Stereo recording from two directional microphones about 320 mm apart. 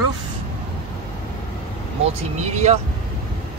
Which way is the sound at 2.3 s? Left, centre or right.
Right.